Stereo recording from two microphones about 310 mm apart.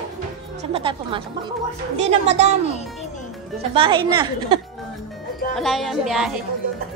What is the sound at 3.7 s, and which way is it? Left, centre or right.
Speech, centre.